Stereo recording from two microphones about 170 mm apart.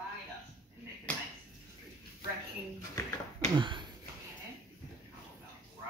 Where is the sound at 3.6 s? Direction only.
25° right (ahead or behind).